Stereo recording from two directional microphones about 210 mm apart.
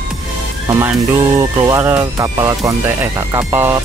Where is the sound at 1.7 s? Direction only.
15° right (ahead or behind).